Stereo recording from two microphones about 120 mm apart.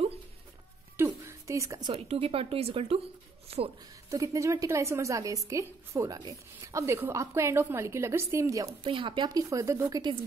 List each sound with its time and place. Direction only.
0.9 s a sound: 20° right (ahead or behind)
2.0 s speech: 55° right (ahead or behind)
4.1 s a woman's voice: 25° right (ahead or behind)
8.8 s speech: 45° right (ahead or behind)
9.4 s a woman's voice: 25° right (ahead or behind)